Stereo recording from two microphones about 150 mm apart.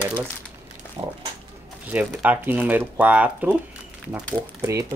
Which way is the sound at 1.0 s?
35° right (ahead or behind).